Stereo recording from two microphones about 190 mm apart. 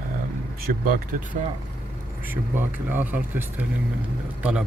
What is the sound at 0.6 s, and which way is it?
Speech, 50° right (ahead or behind).